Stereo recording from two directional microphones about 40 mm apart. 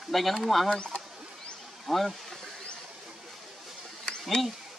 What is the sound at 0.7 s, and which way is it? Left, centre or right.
Speech, left.